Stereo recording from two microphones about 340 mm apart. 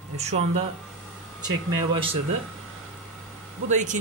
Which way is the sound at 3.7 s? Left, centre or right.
Right.